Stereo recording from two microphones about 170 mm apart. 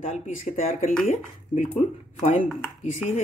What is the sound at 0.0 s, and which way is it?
A woman's voice, 50° left (ahead or behind).